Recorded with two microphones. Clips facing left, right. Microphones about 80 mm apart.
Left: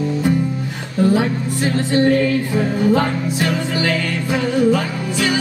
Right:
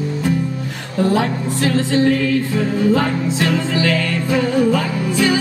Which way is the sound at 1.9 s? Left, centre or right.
Centre.